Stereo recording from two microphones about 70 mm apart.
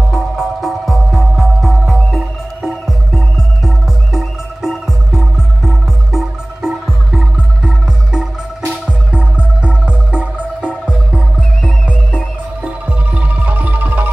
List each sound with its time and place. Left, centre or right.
0.1 s music: centre; by 14.1 s right